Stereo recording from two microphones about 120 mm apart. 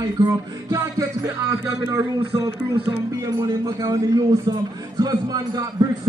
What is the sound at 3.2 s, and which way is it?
A man's voice, 30° right (ahead or behind).